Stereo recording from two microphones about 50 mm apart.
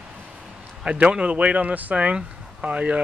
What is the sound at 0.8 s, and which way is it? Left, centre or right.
Speech, right.